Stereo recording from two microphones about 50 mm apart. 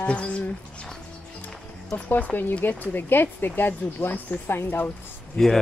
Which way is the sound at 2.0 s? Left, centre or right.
Left.